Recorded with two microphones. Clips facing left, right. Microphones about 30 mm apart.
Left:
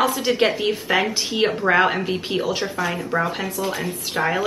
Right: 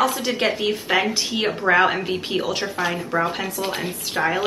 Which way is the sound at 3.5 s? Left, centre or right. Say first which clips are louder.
Left 1 dB; right.